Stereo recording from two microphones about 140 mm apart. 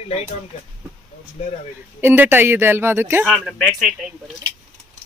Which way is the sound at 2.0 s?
15° right (ahead or behind).